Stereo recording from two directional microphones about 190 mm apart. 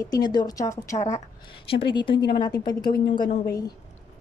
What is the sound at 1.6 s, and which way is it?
Speech, 25° left (ahead or behind).